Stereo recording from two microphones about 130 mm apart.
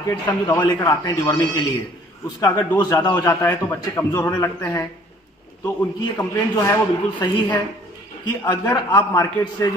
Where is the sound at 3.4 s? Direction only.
20° left (ahead or behind).